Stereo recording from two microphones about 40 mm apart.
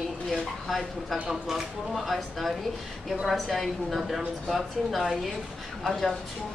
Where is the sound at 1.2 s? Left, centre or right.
Centre.